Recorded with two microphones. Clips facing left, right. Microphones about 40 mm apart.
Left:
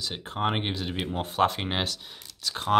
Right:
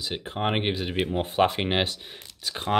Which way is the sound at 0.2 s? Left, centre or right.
Centre.